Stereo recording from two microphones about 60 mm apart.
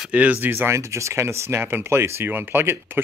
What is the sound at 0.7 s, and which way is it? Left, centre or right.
Speech, right.